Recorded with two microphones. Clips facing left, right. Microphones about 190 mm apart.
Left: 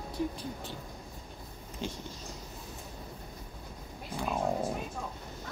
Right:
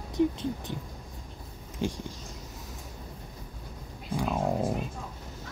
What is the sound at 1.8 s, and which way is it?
Speech, 15° right (ahead or behind).